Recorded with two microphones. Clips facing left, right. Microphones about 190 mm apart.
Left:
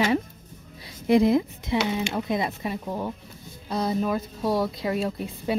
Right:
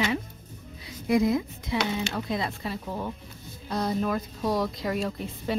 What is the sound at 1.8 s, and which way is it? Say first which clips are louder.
Speech: even; 15° left (ahead or behind).